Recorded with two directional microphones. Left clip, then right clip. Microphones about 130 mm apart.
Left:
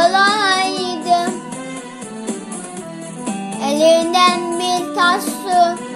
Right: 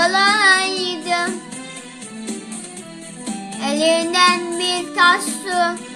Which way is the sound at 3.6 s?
10° right (ahead or behind).